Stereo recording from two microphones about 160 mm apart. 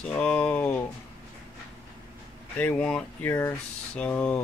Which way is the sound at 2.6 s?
10° left (ahead or behind).